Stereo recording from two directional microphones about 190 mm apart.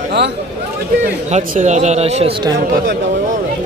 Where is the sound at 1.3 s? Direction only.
40° right (ahead or behind).